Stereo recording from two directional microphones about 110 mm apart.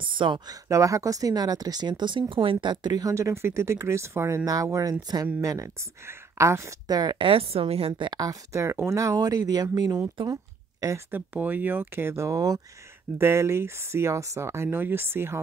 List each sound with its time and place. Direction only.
0.0 s speech: 45° right (ahead or behind)
0.7 s speech: 30° right (ahead or behind)
7.0 s speech: 40° right (ahead or behind)
7.2 s a woman's voice: 60° right (ahead or behind)
8.1 s speech: 35° right (ahead or behind)
10.3 s a sound: 30° right (ahead or behind)
11.1 s speech: 15° right (ahead or behind)